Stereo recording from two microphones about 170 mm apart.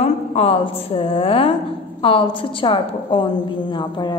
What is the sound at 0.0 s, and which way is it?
A woman's voice, 35° left (ahead or behind).